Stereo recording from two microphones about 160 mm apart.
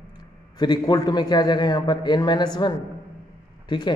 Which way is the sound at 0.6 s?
25° left (ahead or behind).